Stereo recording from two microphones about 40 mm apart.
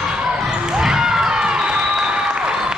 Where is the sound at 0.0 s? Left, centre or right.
Right.